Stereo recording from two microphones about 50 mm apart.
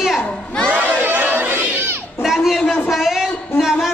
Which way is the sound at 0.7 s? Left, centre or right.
Right.